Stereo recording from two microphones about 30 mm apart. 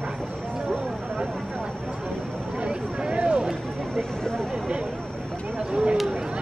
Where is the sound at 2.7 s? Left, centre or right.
Right.